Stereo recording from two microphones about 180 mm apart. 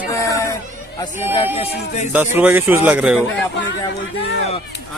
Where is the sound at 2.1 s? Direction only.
10° right (ahead or behind).